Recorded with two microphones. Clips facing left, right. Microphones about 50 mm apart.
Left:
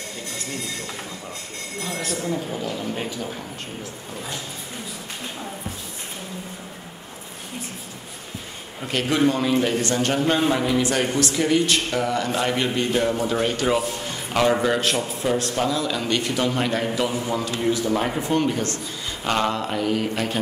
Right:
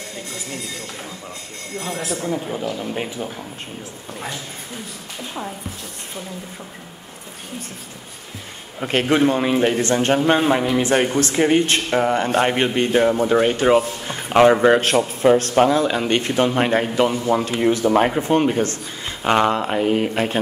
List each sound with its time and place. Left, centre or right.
2.0 s speech: centre
2.8 s a man's voice: centre
8.8 s speech: right